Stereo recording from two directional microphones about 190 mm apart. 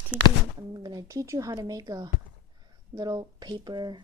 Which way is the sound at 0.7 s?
20° right (ahead or behind).